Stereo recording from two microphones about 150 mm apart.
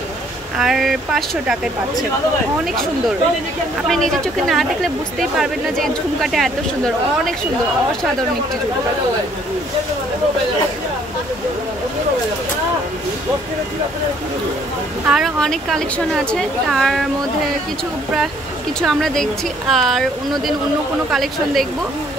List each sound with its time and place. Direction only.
0.6 s speech: centre (ahead or behind)
3.9 s speech: centre (ahead or behind)
15.0 s speech: centre (ahead or behind)
18.8 s speech: centre (ahead or behind)